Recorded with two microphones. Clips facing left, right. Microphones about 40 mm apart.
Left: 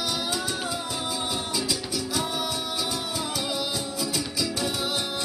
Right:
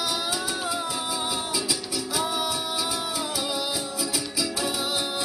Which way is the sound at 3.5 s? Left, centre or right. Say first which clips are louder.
Even; centre.